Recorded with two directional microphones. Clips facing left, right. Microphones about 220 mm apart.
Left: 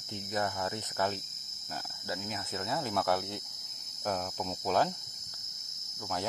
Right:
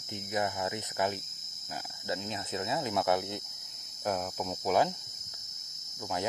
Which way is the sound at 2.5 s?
20° right (ahead or behind).